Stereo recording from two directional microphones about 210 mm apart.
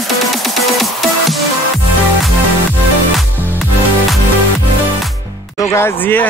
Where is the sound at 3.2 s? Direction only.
Centre (ahead or behind).